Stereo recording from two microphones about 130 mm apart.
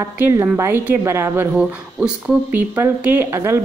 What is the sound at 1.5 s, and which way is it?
Speech, 5° right (ahead or behind).